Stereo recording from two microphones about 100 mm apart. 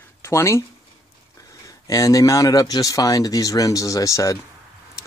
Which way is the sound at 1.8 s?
35° left (ahead or behind).